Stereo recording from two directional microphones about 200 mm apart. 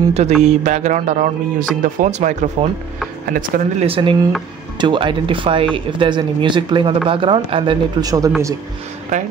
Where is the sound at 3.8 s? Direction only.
25° right (ahead or behind).